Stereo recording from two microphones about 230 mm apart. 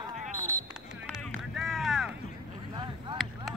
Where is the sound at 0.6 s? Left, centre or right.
Centre.